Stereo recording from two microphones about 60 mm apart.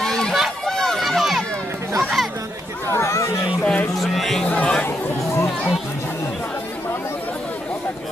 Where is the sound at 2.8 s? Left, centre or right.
Left.